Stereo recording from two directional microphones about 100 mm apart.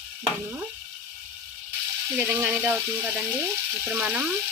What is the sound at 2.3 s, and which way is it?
Stir, 10° right (ahead or behind).